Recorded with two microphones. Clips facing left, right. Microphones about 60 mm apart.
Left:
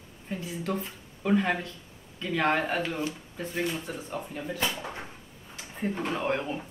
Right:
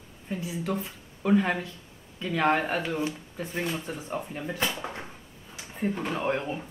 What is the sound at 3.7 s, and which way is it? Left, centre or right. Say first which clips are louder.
Speech: right 2 dB; right.